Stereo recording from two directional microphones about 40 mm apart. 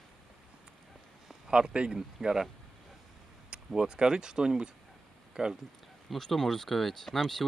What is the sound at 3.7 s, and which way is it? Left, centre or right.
Speech, centre.